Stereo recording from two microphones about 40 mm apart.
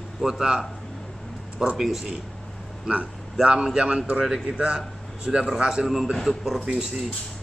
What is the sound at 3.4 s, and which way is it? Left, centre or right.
A man's voice, right.